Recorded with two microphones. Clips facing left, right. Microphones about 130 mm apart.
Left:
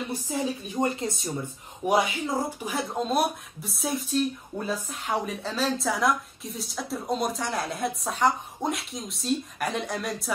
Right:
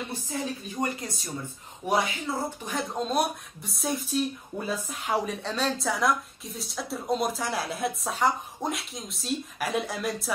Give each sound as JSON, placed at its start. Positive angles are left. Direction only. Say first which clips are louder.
{"t": 0.7, "sound": "speech", "louder": "left 5 dB", "side_deg": 25}
{"t": 1.9, "sound": "speech", "louder": "left 3 dB", "side_deg": 15}